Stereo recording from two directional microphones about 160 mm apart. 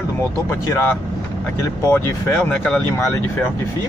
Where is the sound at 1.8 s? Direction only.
15° left (ahead or behind).